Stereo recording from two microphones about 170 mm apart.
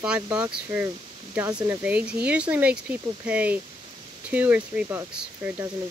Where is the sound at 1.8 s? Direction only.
10° right (ahead or behind).